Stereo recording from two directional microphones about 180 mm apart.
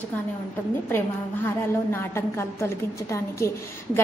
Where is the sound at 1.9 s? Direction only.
15° left (ahead or behind).